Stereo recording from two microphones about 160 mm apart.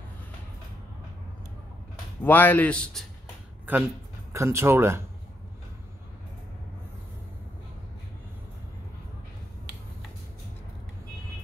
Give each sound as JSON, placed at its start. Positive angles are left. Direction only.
{"t": 2.2, "sound": "a man's voice", "side_deg": 10}
{"t": 3.7, "sound": "speech", "side_deg": -10}